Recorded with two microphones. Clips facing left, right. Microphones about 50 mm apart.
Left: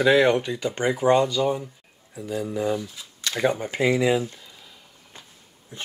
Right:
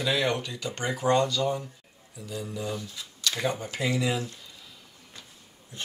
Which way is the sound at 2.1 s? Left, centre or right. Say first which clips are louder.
Left 8 dB; left.